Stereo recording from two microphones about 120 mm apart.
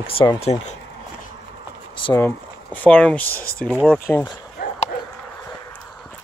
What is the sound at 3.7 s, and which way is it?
Speech, 5° right (ahead or behind).